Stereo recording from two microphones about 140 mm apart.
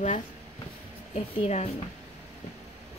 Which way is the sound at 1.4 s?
50° left (ahead or behind).